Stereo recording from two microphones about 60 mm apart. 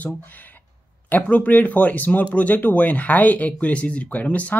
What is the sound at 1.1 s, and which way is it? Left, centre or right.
Speech, left.